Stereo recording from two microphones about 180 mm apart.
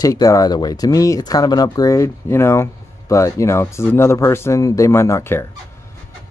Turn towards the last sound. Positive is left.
turn(degrees=15)  # may be behind; listen again after turning